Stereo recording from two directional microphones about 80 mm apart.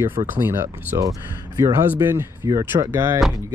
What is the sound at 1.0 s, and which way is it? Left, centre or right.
Speech, right.